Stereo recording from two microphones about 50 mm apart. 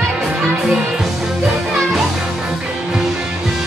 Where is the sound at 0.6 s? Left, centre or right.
Centre.